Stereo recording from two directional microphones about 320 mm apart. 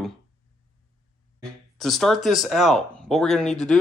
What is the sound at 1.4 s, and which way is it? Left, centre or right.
Speech, centre.